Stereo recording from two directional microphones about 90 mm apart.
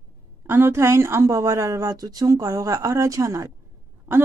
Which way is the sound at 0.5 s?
30° right (ahead or behind).